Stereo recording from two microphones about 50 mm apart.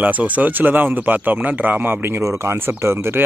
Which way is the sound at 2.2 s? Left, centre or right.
Right.